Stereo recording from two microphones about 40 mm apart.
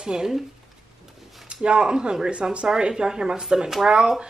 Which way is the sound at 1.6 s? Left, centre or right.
Right.